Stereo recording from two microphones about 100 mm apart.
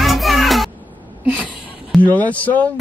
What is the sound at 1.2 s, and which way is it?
Speech, 10° right (ahead or behind).